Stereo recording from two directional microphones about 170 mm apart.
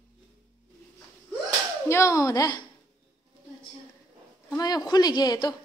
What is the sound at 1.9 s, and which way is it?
Speech, 20° left (ahead or behind).